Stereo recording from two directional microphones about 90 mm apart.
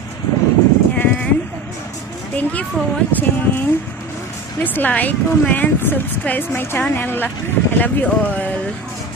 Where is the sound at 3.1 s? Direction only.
20° left (ahead or behind).